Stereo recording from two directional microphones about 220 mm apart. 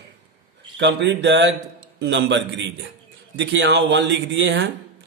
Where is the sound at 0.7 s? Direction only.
50° right (ahead or behind).